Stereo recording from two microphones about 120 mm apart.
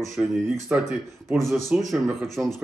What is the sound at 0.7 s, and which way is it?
Speech, 15° right (ahead or behind).